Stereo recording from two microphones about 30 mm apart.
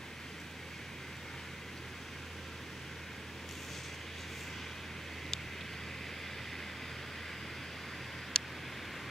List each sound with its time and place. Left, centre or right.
8.3 s vehicle: left